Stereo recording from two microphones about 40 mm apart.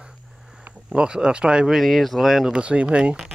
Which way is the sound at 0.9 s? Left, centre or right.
Right.